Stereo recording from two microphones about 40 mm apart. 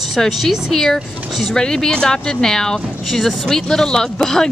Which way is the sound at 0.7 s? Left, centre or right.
Centre.